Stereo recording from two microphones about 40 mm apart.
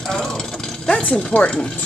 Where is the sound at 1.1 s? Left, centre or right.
Left.